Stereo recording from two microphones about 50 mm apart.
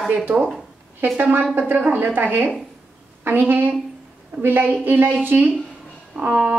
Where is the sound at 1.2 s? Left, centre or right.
Right.